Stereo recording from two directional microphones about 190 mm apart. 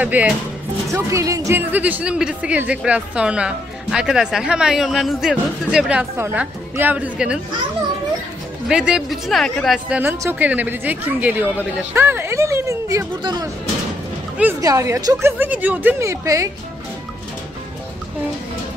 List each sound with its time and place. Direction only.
0.0 s a woman's voice: 10° right (ahead or behind)
8.6 s a woman's voice: 5° right (ahead or behind)